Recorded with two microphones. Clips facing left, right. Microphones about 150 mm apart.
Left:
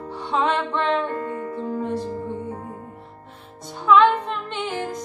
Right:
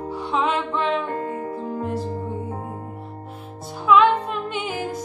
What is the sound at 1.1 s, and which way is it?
Music, 35° right (ahead or behind).